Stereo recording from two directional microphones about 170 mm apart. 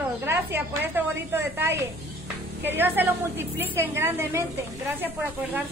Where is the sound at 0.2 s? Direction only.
10° right (ahead or behind).